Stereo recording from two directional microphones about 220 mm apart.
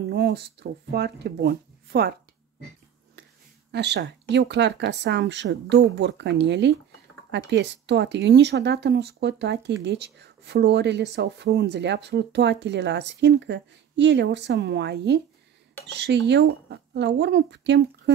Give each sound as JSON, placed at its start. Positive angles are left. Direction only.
{"t": 0.1, "sound": "speech", "side_deg": -45}
{"t": 3.7, "sound": "speech", "side_deg": -50}